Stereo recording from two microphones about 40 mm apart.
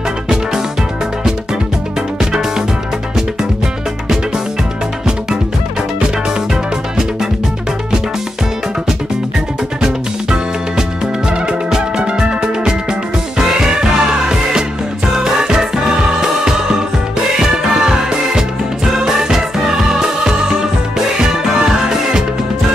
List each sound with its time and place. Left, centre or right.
2.1 s music: centre
9.8 s music: centre